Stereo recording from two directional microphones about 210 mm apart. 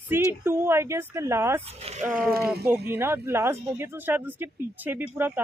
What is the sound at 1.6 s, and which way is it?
Speech, 30° right (ahead or behind).